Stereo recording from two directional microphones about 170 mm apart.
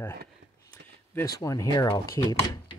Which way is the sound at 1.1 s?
15° left (ahead or behind).